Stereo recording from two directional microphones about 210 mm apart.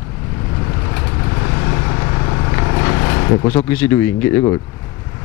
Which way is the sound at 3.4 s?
10° left (ahead or behind).